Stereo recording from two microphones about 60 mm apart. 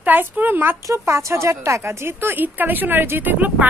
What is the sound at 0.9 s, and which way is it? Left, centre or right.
Speech, right.